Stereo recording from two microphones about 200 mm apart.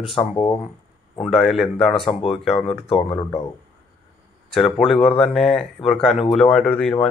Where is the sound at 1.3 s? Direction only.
Centre (ahead or behind).